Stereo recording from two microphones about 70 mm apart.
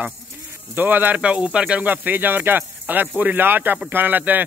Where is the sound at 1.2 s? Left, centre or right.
Centre.